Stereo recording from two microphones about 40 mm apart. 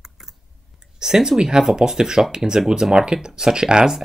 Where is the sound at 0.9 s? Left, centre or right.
Centre.